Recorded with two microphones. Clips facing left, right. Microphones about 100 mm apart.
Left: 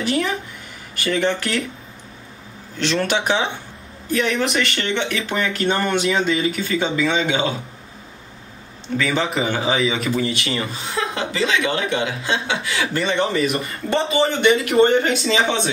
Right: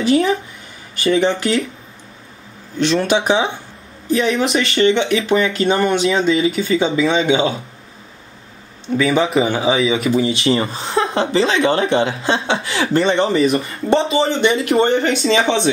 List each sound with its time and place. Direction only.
0.0 s speech: 30° right (ahead or behind)
3.2 s speech: 25° right (ahead or behind)
5.1 s speech: 5° right (ahead or behind)
6.5 s speech: 20° right (ahead or behind)
8.9 s speech: 15° right (ahead or behind)
9.8 s speech: centre (ahead or behind)
10.2 s speech: 30° right (ahead or behind)